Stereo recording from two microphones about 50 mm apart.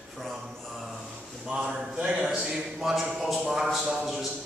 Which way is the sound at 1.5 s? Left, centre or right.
Centre.